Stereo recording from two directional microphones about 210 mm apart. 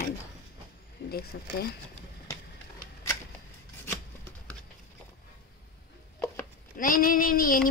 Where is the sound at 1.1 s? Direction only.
45° left (ahead or behind).